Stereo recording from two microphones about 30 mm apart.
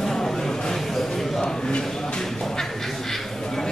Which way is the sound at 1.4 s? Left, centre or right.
Left.